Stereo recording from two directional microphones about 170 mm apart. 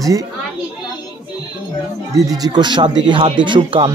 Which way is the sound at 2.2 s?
20° right (ahead or behind).